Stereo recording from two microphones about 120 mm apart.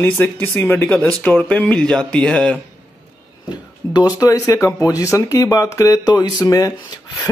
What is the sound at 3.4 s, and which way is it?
Speech, 35° left (ahead or behind).